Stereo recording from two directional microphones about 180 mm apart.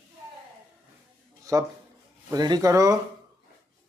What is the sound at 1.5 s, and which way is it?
Speech, 20° right (ahead or behind).